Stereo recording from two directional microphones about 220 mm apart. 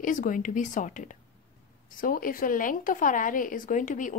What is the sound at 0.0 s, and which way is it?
Speech, 35° left (ahead or behind).